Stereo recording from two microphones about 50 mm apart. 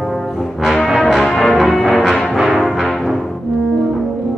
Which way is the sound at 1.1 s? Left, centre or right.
Centre.